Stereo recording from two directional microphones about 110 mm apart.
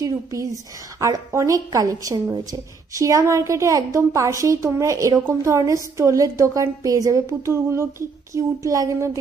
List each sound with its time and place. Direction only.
0.0 s a woman's voice: 30° right (ahead or behind)